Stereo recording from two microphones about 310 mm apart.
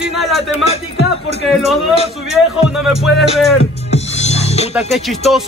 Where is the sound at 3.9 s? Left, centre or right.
Left.